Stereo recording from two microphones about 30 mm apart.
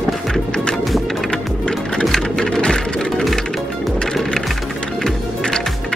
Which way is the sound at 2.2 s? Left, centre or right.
Left.